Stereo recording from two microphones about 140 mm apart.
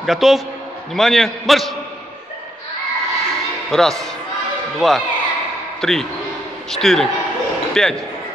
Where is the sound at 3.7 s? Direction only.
5° left (ahead or behind).